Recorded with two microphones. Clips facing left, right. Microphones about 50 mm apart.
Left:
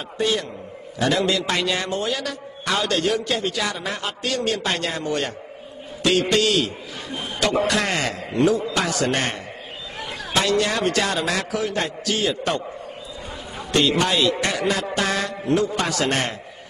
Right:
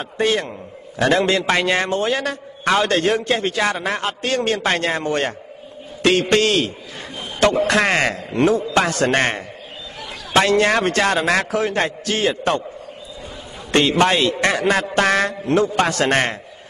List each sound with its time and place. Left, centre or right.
0.2 s a man's voice: right
13.7 s a man's voice: right